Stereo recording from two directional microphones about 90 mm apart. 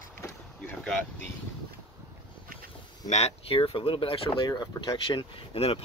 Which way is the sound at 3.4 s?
85° left.